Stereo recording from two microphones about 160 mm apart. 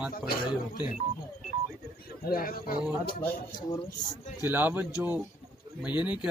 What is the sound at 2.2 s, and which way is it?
Speech, 65° left (ahead or behind).